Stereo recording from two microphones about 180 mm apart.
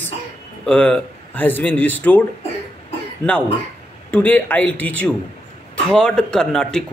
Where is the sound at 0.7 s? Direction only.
5° left (ahead or behind).